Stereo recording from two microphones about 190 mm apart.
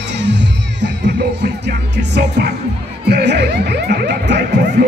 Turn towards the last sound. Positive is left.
turn(degrees=-60)  # may be behind; listen again after turning